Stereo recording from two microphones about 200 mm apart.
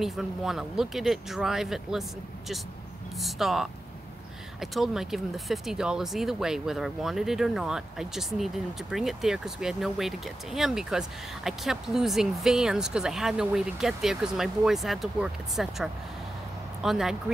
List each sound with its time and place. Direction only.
0.0 s speech: centre (ahead or behind)